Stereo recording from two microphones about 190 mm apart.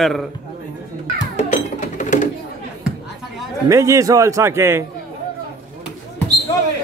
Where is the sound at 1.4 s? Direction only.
35° left (ahead or behind).